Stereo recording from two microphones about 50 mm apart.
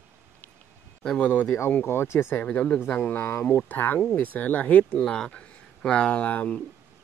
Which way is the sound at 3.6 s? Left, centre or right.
Left.